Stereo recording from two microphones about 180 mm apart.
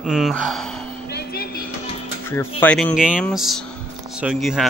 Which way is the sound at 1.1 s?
60° left (ahead or behind).